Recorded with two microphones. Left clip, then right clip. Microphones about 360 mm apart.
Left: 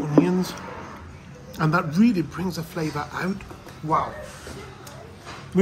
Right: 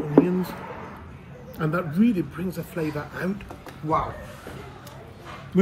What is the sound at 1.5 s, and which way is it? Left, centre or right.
Speech, centre.